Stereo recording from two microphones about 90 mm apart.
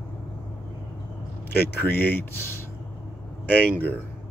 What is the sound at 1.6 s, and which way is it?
Speech, 25° left (ahead or behind).